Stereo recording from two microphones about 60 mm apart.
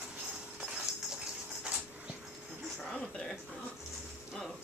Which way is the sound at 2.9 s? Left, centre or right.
Centre.